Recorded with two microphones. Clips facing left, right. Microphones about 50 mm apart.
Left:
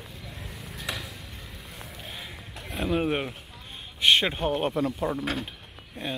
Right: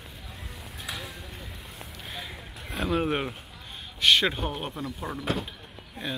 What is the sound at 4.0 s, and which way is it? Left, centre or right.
Speech, left.